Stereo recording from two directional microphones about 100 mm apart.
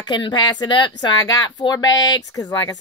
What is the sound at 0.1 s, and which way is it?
Speech, 45° left (ahead or behind).